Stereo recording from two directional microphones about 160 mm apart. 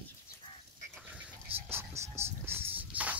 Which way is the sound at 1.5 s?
15° right (ahead or behind).